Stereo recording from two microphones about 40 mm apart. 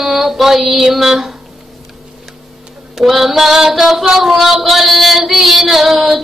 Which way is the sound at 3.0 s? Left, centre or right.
Centre.